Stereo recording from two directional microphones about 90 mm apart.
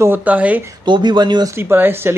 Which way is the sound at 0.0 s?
20° right (ahead or behind).